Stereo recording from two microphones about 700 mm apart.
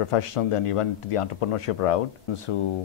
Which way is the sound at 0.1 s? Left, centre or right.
Left.